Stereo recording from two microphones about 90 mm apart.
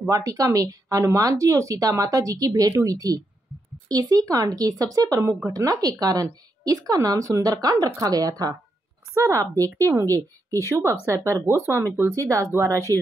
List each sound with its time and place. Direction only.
0.1 s speech: 40° right (ahead or behind)
9.1 s a woman's voice: 35° right (ahead or behind)
12.9 s a woman's voice: 30° left (ahead or behind)